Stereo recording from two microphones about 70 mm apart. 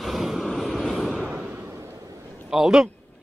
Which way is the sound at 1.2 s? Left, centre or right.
Right.